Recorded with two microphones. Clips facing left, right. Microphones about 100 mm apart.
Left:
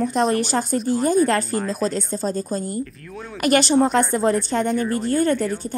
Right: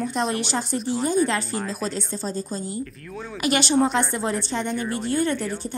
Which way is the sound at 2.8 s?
Centre (ahead or behind).